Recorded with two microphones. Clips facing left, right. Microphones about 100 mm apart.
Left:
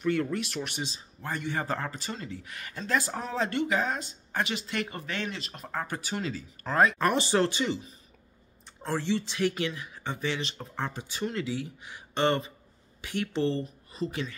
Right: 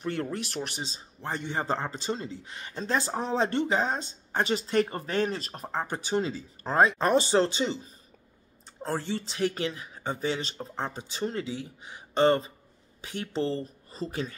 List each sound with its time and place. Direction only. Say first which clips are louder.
0.0 s speech: left 3 dB; 35° right (ahead or behind)
5.7 s speech: right 4 dB; 25° right (ahead or behind)